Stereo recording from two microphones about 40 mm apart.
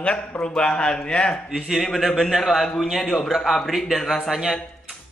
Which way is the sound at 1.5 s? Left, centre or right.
Centre.